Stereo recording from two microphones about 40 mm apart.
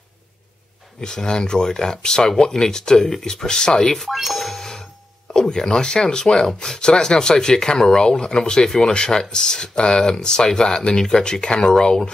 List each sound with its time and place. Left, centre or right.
1.0 s speech: centre
4.1 s doorbell: centre
5.3 s speech: centre
8.6 s speech: centre